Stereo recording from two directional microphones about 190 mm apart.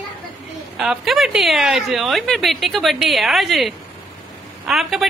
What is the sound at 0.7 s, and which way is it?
A woman's voice, 5° right (ahead or behind).